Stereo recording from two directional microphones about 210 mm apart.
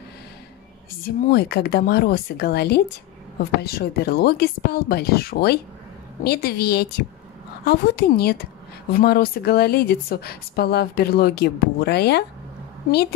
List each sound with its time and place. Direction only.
1.0 s speech: 50° left (ahead or behind)